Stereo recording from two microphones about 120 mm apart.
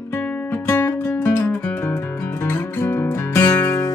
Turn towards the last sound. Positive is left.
turn(degrees=20)  # may be behind; listen again after turning